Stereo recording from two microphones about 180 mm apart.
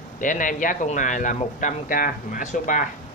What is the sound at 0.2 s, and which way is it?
Speech, 45° left (ahead or behind).